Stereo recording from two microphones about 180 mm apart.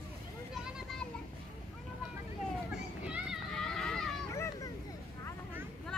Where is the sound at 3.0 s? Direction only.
5° right (ahead or behind).